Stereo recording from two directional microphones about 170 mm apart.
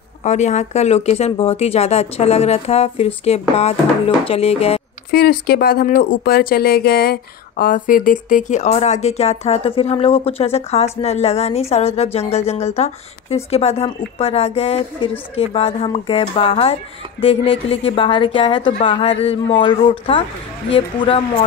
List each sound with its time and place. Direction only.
0.2 s speech: 45° left (ahead or behind)
5.1 s speech: 65° left (ahead or behind); by 21.5 s 30° left (ahead or behind)